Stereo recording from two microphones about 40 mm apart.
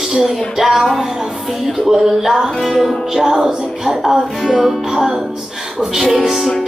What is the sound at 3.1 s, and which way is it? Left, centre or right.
Music, centre.